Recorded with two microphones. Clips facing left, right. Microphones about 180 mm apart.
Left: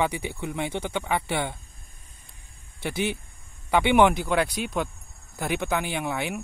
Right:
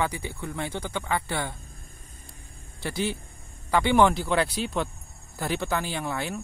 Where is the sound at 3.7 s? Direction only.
20° left (ahead or behind).